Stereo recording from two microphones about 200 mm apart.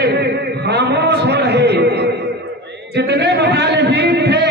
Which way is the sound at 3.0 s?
55° right (ahead or behind).